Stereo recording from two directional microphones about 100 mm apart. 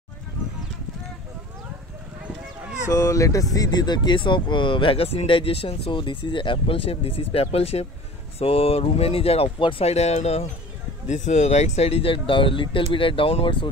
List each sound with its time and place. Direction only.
2.8 s speech: 35° left (ahead or behind); by 10.4 s 90° left
11.7 s speech: 90° left; by 13.7 s 65° left (ahead or behind)